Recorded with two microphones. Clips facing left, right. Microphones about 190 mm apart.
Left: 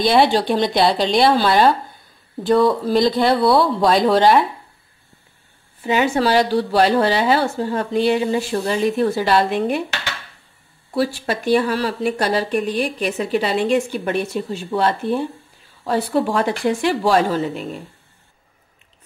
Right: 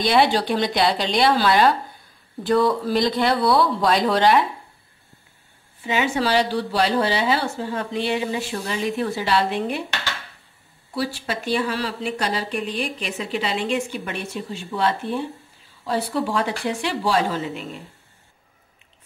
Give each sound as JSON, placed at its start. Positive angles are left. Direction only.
{"t": 0.0, "sound": "speech", "side_deg": 30}
{"t": 5.9, "sound": "a woman's voice", "side_deg": 45}
{"t": 11.1, "sound": "a woman's voice", "side_deg": 45}